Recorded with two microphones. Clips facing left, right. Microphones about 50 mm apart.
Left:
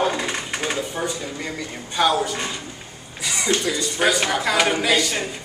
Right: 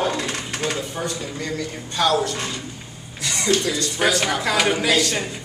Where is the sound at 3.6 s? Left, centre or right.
Centre.